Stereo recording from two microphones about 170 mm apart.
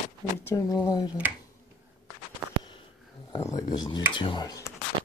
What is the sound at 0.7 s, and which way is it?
Speech, 20° left (ahead or behind).